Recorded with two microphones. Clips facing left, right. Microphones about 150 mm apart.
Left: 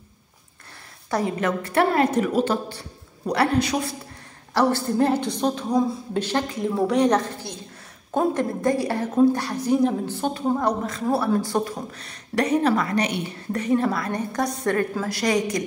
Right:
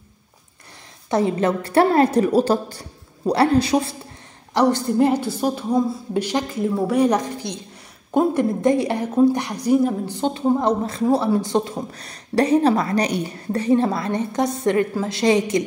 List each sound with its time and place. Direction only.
1.1 s a woman's voice: 30° right (ahead or behind)
4.6 s a woman's voice: 15° right (ahead or behind)
8.5 s a woman's voice: 20° right (ahead or behind)
10.1 s a woman's voice: 25° right (ahead or behind)
11.9 s a woman's voice: 35° right (ahead or behind)